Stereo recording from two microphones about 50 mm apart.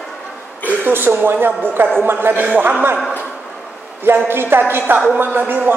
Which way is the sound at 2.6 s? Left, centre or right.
Right.